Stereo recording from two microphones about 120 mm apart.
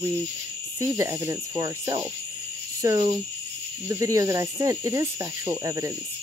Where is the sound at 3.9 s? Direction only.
25° right (ahead or behind).